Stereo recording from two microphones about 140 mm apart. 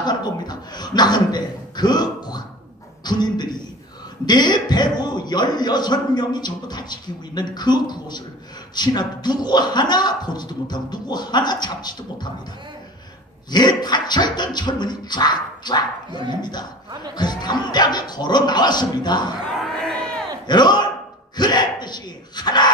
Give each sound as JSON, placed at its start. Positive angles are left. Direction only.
{"t": 0.0, "sound": "a man's voice", "side_deg": 30}
{"t": 3.0, "sound": "a sound", "side_deg": 30}
{"t": 4.3, "sound": "a man's voice", "side_deg": 30}
{"t": 13.5, "sound": "a man's voice", "side_deg": 30}
{"t": 19.8, "sound": "crowd", "side_deg": 5}
{"t": 20.4, "sound": "a man's voice", "side_deg": 30}